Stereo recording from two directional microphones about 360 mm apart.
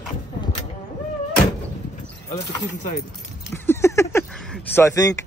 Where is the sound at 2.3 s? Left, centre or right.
Centre.